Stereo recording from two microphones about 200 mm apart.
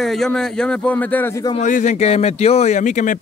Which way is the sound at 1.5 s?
40° left (ahead or behind).